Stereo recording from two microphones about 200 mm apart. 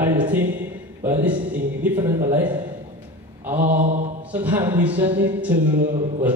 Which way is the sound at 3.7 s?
35° right (ahead or behind).